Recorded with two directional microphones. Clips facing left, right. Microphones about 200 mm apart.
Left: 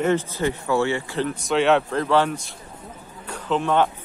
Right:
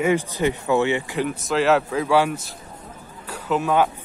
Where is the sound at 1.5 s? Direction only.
Centre (ahead or behind).